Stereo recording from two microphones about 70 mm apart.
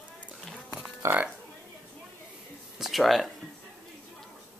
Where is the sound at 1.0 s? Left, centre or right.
Right.